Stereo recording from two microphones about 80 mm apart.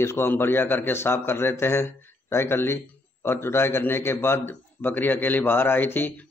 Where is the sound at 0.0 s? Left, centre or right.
Left.